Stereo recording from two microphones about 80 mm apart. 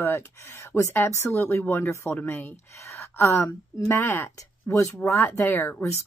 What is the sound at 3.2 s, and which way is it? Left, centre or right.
A woman's voice, left.